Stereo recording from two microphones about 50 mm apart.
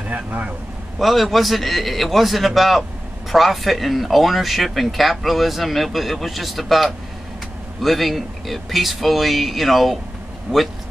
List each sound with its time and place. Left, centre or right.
0.1 s speech: right
0.9 s speech: centre